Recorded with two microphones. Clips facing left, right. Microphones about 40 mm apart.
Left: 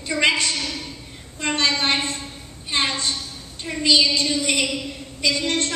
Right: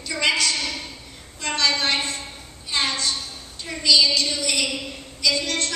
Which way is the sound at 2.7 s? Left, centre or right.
Left.